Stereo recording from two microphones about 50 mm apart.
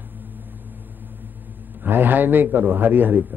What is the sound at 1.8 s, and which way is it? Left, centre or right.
A man's voice, right.